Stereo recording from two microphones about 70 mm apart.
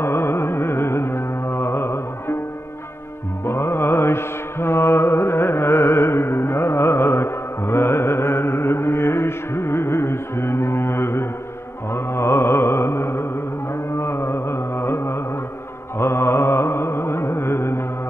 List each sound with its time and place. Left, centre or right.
0.0 s carnatic music: left
3.4 s mantra: left
13.9 s music: left